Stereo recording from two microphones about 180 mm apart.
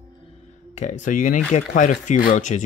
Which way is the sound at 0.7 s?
45° left (ahead or behind).